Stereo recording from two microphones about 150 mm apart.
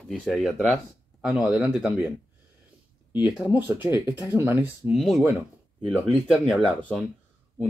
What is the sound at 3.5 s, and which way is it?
Speech, 10° right (ahead or behind).